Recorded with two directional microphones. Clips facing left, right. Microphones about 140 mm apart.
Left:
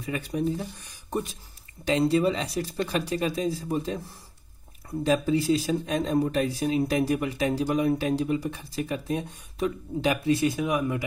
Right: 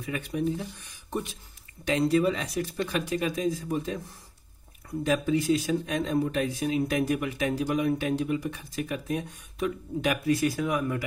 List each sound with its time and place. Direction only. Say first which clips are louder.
0.0 s speech: left 1 dB; 35° left (ahead or behind)
5.0 s speech: left 2 dB; 30° left (ahead or behind)